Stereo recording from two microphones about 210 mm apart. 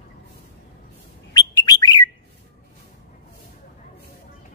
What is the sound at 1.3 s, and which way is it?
Bird, 20° left (ahead or behind).